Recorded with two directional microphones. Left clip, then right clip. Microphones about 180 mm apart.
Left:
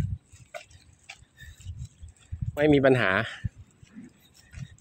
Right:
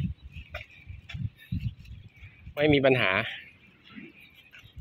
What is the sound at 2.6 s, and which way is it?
Speech, 45° left (ahead or behind).